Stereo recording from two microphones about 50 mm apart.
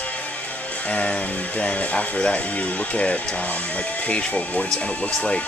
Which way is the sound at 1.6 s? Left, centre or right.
Left.